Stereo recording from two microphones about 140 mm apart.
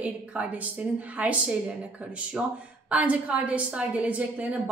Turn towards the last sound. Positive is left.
turn(degrees=-10)  # may be behind; listen again after turning